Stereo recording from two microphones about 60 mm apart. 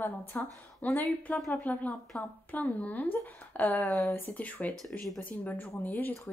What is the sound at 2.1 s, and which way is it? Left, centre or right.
Speech, left.